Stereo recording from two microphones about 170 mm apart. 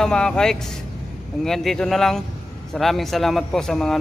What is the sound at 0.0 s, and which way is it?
A man's voice, 5° left (ahead or behind).